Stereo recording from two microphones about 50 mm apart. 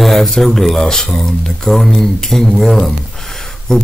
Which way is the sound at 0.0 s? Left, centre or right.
Centre.